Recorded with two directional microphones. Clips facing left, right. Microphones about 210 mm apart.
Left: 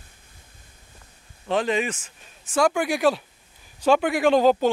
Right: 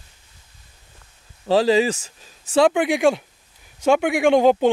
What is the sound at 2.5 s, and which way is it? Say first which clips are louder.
Speech: right 5 dB; 20° right (ahead or behind).